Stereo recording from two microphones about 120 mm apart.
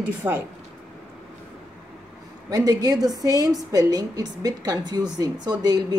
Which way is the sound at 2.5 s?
35° right (ahead or behind).